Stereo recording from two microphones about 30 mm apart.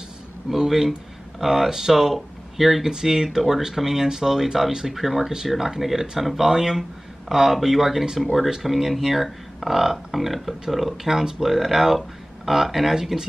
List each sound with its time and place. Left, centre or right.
0.6 s speech: centre
2.8 s speech: centre
3.3 s speech: centre